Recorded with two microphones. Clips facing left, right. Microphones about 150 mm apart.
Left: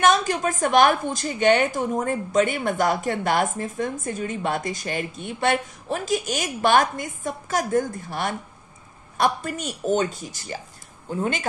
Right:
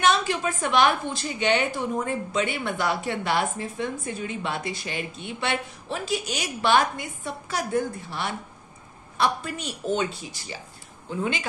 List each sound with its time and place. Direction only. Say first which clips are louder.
0.0 s a woman's voice: left 3 dB; 45° left (ahead or behind)